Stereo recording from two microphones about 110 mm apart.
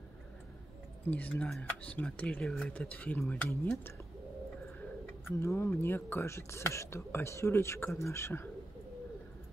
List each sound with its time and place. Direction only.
1.1 s speech: 15° left (ahead or behind)
5.4 s speech: 25° left (ahead or behind)